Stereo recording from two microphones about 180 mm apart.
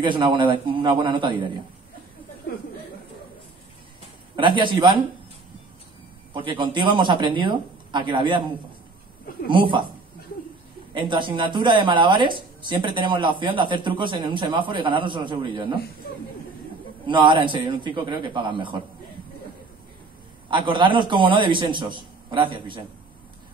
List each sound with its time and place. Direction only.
0.0 s speech: 25° right (ahead or behind)
4.4 s speech: 25° right (ahead or behind)
6.3 s speech: 25° right (ahead or behind)
9.5 s speech: 25° right (ahead or behind)
10.9 s speech: 25° right (ahead or behind)
17.0 s speech: 25° right (ahead or behind)
20.4 s speech: 25° right (ahead or behind)